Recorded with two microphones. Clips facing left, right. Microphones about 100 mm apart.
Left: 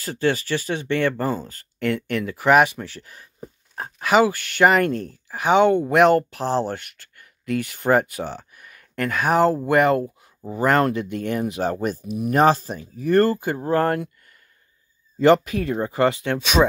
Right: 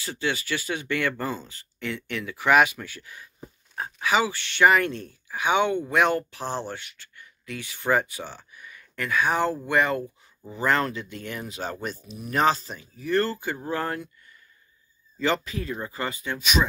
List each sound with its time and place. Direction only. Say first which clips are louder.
0.0 s speech: left 7 dB; 40° left (ahead or behind)
2.8 s speech: left 4 dB; 35° left (ahead or behind)
8.5 s speech: right 1 dB; 55° left (ahead or behind)
15.1 s speech: left 10 dB; 55° left (ahead or behind); by 16.6 s 70° left (ahead or behind)